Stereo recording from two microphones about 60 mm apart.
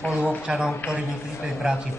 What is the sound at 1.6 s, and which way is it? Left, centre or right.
Speech, centre.